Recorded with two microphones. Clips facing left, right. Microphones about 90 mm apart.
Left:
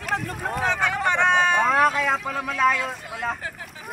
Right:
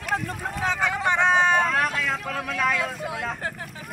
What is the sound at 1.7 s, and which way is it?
Speech, 20° left (ahead or behind).